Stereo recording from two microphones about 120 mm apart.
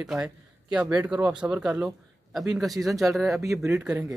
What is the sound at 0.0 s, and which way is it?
Speech, 5° right (ahead or behind).